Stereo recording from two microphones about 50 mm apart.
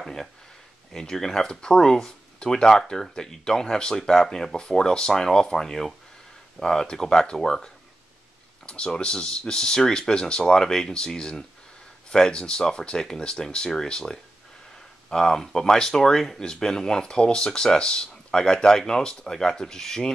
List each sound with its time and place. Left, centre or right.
0.0 s speech: centre